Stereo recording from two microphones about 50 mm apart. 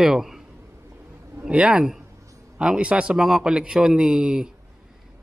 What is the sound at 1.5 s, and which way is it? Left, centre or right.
A man's voice, right.